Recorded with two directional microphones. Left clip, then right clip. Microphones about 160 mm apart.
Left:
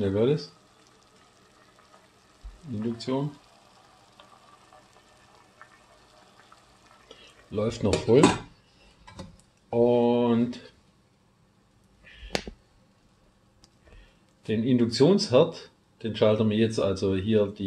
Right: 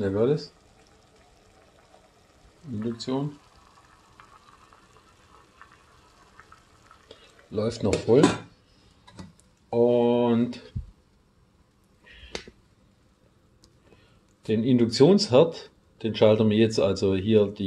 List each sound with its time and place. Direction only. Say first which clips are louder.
0.0 s speech: right 1 dB; 5° right (ahead or behind)
2.8 s speech: even; 10° right (ahead or behind)
7.5 s speech: even; 10° right (ahead or behind)
9.7 s speech: right 1 dB; 15° right (ahead or behind)
12.1 s finger snapping: even; 25° right (ahead or behind)
14.4 s speech: right 2 dB; 30° right (ahead or behind)